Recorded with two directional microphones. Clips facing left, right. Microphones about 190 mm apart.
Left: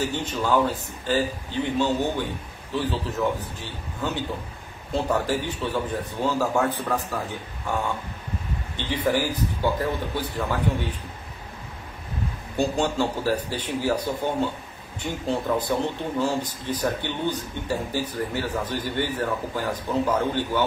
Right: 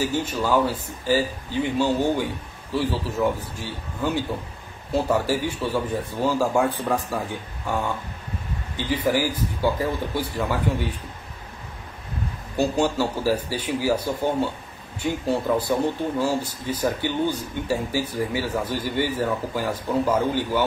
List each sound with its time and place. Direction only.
0.0 s speech: 10° right (ahead or behind)
8.7 s speech: 10° right (ahead or behind)
12.5 s speech: 5° right (ahead or behind)